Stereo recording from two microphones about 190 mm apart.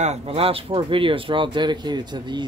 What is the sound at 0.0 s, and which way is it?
Speech, 35° right (ahead or behind).